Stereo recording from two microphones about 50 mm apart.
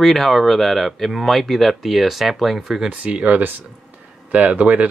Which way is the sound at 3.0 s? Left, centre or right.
Right.